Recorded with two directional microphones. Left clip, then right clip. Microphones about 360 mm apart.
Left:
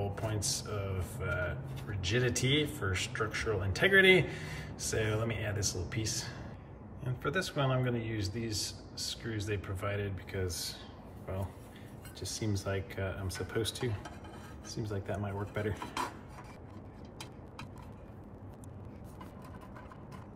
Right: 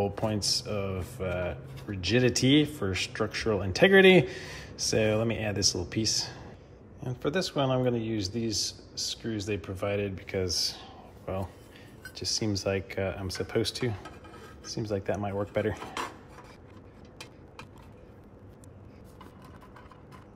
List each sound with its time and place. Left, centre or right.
0.1 s speech: centre
12.2 s speech: centre
15.7 s dishes: centre